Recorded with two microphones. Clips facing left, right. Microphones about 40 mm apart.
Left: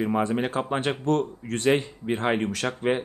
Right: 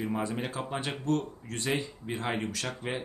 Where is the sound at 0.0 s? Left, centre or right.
Left.